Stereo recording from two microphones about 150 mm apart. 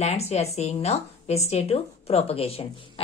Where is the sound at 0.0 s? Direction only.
45° left (ahead or behind).